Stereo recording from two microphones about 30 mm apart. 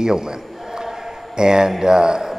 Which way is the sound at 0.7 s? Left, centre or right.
Centre.